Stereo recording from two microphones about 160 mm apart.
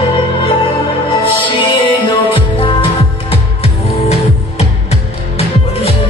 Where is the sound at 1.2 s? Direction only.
30° left (ahead or behind).